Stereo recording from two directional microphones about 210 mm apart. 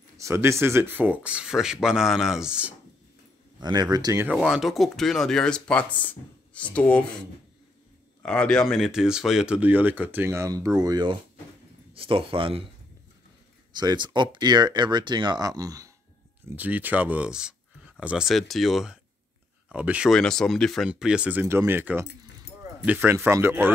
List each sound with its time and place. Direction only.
0.2 s speech: 15° right (ahead or behind)
3.6 s speech: 20° right (ahead or behind)
4.4 s speech: centre (ahead or behind)
8.2 s speech: 5° left (ahead or behind); by 12.6 s 25° right (ahead or behind)
13.7 s speech: 20° right (ahead or behind)